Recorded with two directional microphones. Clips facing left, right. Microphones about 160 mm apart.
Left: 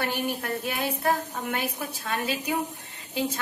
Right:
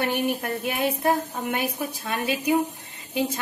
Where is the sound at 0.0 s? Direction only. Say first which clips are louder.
Right 4 dB; 20° right (ahead or behind).